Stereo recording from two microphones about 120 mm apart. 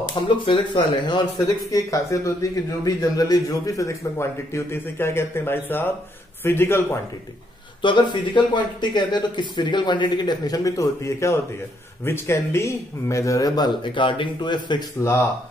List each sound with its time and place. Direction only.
0.1 s speech: 40° left (ahead or behind); by 7.0 s 20° left (ahead or behind)
7.8 s speech: 40° left (ahead or behind)